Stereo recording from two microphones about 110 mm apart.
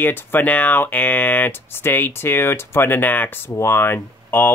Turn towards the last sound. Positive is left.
turn(degrees=20)  # may be behind; listen again after turning